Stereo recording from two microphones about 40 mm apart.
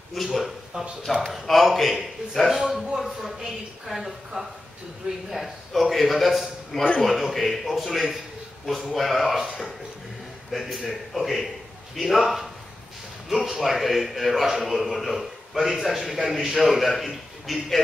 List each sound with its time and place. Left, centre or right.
0.1 s speech: centre
0.7 s a man's voice: centre
1.4 s a man's voice: centre
10.5 s a man's voice: centre